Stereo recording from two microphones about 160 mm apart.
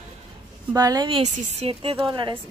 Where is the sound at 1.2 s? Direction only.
45° right (ahead or behind).